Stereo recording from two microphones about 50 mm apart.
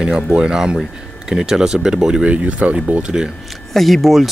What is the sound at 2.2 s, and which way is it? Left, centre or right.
Speech, right.